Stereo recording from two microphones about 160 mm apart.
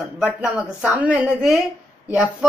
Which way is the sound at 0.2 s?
5° right (ahead or behind).